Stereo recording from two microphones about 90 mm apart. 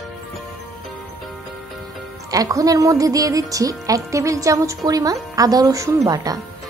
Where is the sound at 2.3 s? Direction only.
40° right (ahead or behind).